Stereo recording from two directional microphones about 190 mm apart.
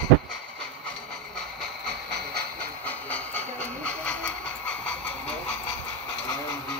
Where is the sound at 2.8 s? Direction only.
10° left (ahead or behind).